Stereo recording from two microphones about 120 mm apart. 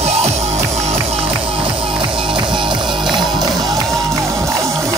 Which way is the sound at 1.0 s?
55° right (ahead or behind).